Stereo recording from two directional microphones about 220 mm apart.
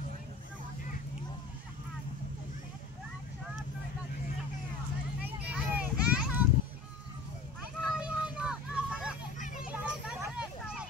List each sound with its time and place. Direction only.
5.5 s children playing: 5° right (ahead or behind)
7.8 s vehicle: 5° right (ahead or behind)
9.4 s children playing: 35° left (ahead or behind)
9.7 s vehicle: 5° right (ahead or behind)